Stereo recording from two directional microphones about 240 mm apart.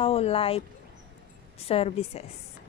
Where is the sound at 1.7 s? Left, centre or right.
Left.